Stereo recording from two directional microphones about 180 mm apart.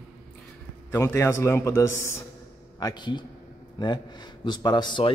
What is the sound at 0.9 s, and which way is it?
A man's voice, 15° left (ahead or behind).